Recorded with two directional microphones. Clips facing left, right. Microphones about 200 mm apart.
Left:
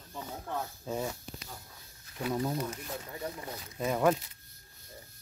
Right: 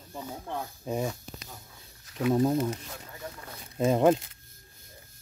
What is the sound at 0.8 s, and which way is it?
Speech, 15° right (ahead or behind).